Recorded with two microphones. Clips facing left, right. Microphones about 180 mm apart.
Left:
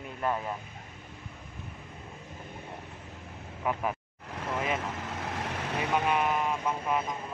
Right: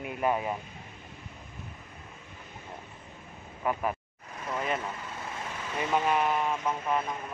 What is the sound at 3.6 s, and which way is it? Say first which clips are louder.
Speech: right 1 dB; centre (ahead or behind).